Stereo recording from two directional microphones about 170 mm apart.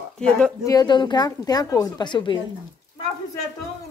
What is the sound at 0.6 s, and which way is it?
A woman's voice, 25° left (ahead or behind).